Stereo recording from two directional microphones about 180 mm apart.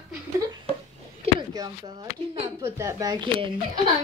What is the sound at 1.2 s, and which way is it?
Speech, 25° right (ahead or behind).